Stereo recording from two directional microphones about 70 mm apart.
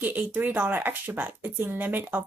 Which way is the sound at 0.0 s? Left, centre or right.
Right.